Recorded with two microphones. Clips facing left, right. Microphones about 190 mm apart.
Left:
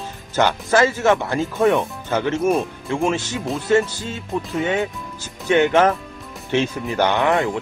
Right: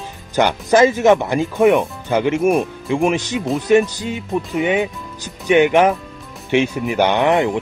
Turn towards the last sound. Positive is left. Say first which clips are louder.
# right 3 dB
turn(degrees=-20)  # may be behind; listen again after turning